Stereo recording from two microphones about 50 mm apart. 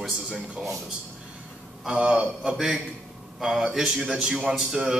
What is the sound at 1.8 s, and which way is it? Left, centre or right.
A man's voice, centre.